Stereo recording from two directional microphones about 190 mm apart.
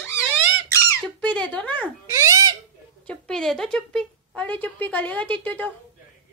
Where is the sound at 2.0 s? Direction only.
15° right (ahead or behind).